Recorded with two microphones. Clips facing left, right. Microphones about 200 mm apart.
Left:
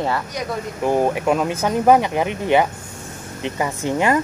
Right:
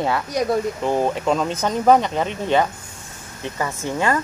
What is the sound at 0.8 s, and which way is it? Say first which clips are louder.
Speech: left 2 dB; 10° left (ahead or behind).